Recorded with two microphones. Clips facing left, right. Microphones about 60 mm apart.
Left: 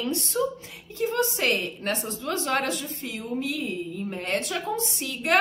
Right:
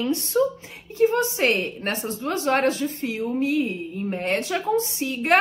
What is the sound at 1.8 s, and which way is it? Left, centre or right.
Speech, right.